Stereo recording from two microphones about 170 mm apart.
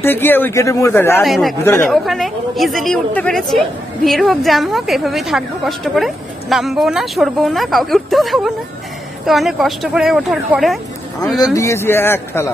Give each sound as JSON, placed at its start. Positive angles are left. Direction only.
{"t": 0.0, "sound": "speech", "side_deg": 10}
{"t": 1.2, "sound": "a woman's voice", "side_deg": 0}
{"t": 11.3, "sound": "speech", "side_deg": 20}